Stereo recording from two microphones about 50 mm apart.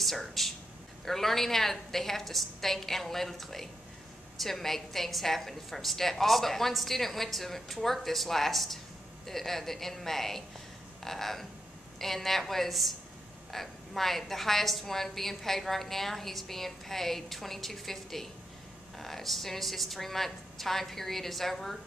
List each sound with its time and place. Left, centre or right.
0.0 s a woman's voice: centre
11.0 s a sound: centre
12.0 s a woman's voice: centre